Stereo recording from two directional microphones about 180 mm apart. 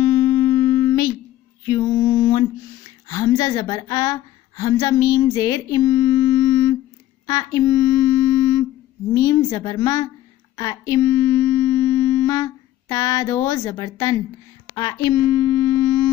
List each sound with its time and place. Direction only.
0.0 s music: 20° left (ahead or behind)
1.7 s mantra: 20° left (ahead or behind)
3.1 s a woman's voice: 20° left (ahead or behind)
7.2 s a sound: 20° left (ahead or behind)
9.1 s a woman's voice: 20° left (ahead or behind)
10.5 s a sound: 20° left (ahead or behind)
14.7 s speech: 20° left (ahead or behind)